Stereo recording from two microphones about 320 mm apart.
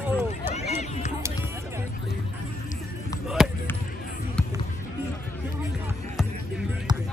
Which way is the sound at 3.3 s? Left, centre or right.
Centre.